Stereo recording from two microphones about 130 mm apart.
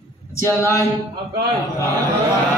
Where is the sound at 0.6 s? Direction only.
25° left (ahead or behind).